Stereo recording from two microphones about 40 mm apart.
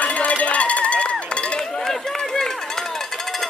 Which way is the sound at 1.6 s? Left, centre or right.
Centre.